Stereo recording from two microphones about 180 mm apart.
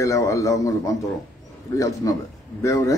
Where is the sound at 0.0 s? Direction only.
20° left (ahead or behind).